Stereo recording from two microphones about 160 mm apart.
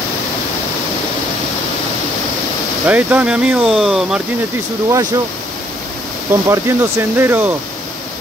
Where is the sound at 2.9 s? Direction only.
10° right (ahead or behind).